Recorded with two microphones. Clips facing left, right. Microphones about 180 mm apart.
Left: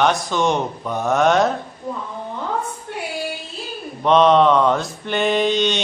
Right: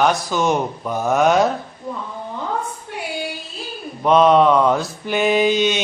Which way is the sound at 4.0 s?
5° right (ahead or behind).